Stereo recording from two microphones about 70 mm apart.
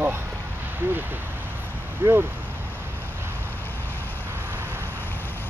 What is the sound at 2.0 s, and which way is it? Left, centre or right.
Speech, right.